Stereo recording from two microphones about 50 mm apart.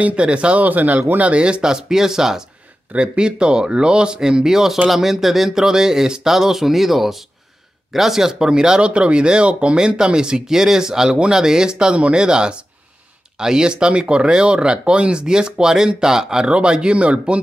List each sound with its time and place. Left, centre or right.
0.0 s speech: right
0.7 s speech: right
1.4 s speech: centre